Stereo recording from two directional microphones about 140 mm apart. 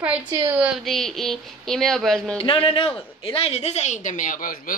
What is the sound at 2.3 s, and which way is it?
A woman's voice, 40° left (ahead or behind).